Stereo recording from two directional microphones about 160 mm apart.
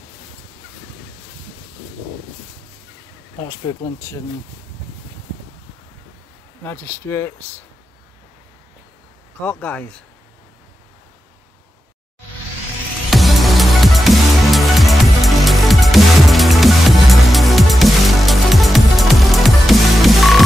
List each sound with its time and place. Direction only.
3.4 s speech: 20° left (ahead or behind)
6.6 s speech: 15° left (ahead or behind)
9.4 s speech: 10° left (ahead or behind)
13.1 s music: centre (ahead or behind)